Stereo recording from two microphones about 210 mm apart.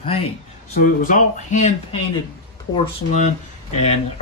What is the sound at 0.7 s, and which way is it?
Speech, 40° left (ahead or behind).